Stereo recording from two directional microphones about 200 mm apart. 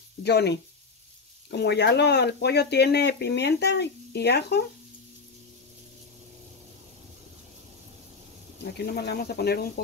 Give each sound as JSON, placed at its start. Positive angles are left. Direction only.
{"t": 0.2, "sound": "speech", "side_deg": 55}
{"t": 8.7, "sound": "speech", "side_deg": 55}